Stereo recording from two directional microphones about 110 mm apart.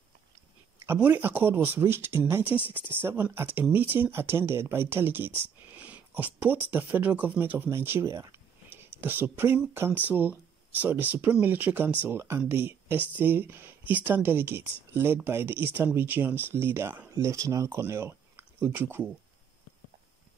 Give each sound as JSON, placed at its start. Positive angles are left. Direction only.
{"t": 0.8, "sound": "speech", "side_deg": -15}